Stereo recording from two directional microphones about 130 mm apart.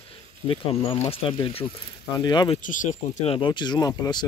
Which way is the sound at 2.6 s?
85° left.